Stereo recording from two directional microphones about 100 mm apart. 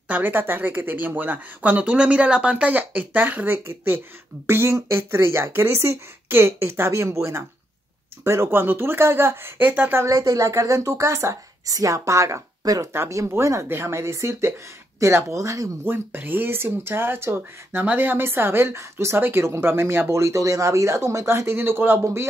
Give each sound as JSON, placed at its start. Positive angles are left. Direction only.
{"t": 0.1, "sound": "speech", "side_deg": -15}
{"t": 10.0, "sound": "speech", "side_deg": -35}
{"t": 15.8, "sound": "speech", "side_deg": -20}